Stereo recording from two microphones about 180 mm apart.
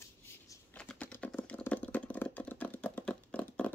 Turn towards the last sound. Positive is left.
turn(degrees=10)  # may be behind; listen again after turning